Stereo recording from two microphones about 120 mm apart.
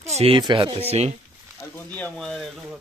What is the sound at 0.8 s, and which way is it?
Speech, 60° right (ahead or behind).